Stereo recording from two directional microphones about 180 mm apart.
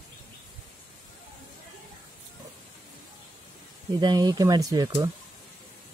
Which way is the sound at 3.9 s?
25° right (ahead or behind).